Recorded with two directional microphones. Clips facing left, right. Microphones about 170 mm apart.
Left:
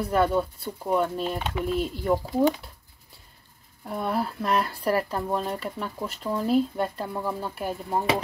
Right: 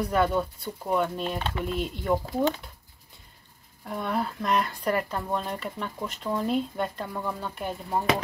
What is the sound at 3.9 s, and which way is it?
Speech, 5° left (ahead or behind).